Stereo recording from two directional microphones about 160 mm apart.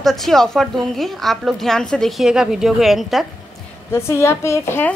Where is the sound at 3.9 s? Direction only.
15° left (ahead or behind).